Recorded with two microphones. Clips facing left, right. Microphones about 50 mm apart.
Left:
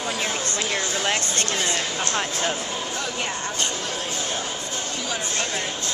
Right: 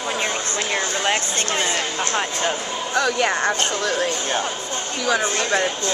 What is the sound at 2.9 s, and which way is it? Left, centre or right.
Speech, right.